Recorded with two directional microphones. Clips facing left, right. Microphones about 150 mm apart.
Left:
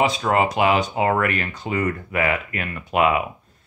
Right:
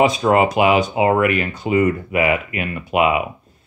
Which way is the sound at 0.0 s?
15° right (ahead or behind).